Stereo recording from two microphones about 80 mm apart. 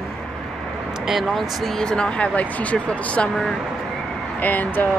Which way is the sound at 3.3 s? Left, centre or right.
Centre.